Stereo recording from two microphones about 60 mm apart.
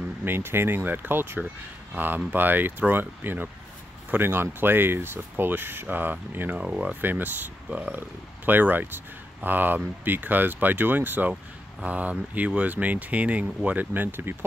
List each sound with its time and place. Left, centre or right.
0.2 s speech: right